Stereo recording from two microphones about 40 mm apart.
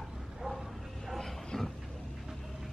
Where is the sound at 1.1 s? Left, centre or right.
Centre.